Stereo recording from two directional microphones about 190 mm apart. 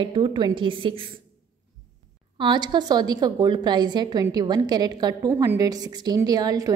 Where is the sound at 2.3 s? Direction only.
25° right (ahead or behind).